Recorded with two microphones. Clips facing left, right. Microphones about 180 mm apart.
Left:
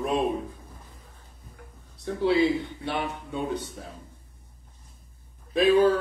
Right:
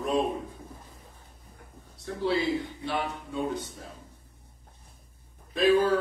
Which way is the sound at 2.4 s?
65° left (ahead or behind).